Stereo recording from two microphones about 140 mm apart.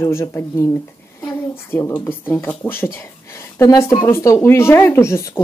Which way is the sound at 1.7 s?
15° left (ahead or behind).